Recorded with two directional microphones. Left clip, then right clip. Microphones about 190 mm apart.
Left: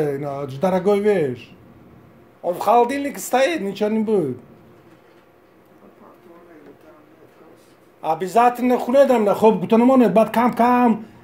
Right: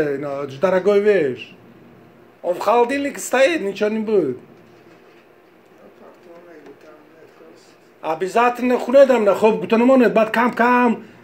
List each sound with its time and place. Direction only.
0.0 s a man's voice: 45° left (ahead or behind)
8.0 s a man's voice: 45° left (ahead or behind)